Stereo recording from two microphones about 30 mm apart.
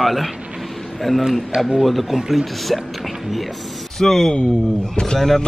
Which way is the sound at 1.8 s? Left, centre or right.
Centre.